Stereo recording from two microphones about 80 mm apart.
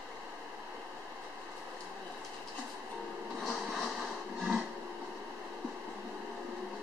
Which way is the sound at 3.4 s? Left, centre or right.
Centre.